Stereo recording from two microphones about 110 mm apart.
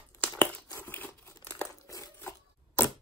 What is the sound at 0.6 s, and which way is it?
Crumpling, 20° left (ahead or behind).